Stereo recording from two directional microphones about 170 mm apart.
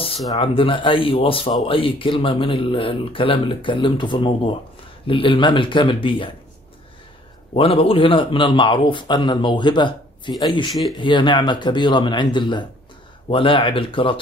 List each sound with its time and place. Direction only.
0.4 s speech: 30° left (ahead or behind)
7.5 s a man's voice: 35° left (ahead or behind)
10.7 s speech: centre (ahead or behind)
11.0 s a man's voice: 30° left (ahead or behind)